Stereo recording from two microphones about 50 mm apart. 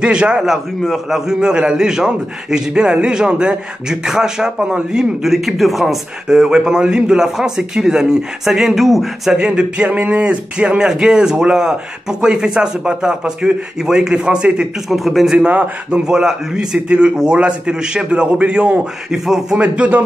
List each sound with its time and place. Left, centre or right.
0.0 s a man's voice: centre
0.8 s a man's voice: centre
1.4 s speech: centre
6.2 s speech: centre
9.4 s a man's voice: centre
14.9 s a man's voice: centre
15.3 s a man's voice: right
15.9 s a man's voice: centre
19.1 s speech: centre
19.6 s a man's voice: right